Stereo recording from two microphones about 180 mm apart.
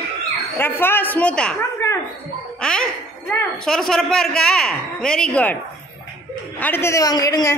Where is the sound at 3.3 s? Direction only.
5° left (ahead or behind).